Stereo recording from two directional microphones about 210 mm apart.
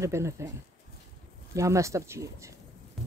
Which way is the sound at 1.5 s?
15° right (ahead or behind).